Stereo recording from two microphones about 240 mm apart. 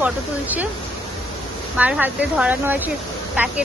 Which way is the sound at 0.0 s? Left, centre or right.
Centre.